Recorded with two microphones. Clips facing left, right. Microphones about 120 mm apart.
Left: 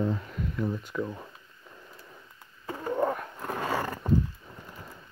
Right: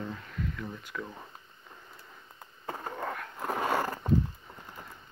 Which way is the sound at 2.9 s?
30° left (ahead or behind).